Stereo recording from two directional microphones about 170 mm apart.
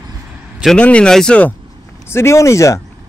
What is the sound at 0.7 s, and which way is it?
Speech, 5° left (ahead or behind).